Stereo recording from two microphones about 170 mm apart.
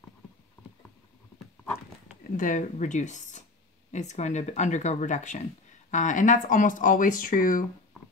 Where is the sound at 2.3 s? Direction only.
50° left (ahead or behind).